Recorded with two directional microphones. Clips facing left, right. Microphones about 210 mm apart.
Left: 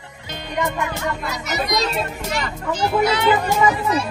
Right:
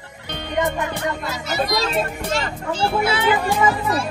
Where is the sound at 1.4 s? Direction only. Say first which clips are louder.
Even; 20° left (ahead or behind).